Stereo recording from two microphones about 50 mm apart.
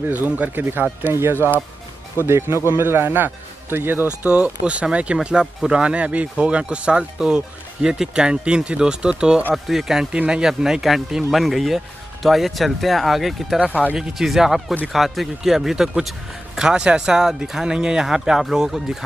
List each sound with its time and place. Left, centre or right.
0.0 s speech: right
1.0 s speech: right
2.7 s speech: right
4.3 s speech: right; by 10.0 s centre
10.1 s speech: right
10.4 s speech: centre
13.6 s speech: right
13.9 s speech: centre
16.5 s speech: centre